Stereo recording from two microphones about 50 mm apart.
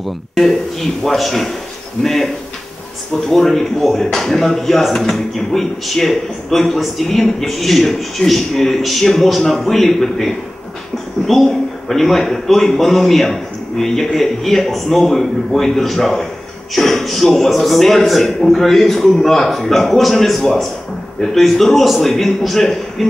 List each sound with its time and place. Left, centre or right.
0.3 s speech: centre
2.0 s a man's voice: left
3.3 s speech: centre